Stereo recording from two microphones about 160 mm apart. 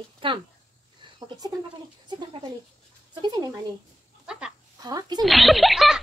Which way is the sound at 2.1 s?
30° right (ahead or behind).